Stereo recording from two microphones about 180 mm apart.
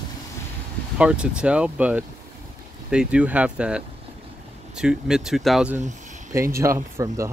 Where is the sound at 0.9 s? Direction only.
5° right (ahead or behind).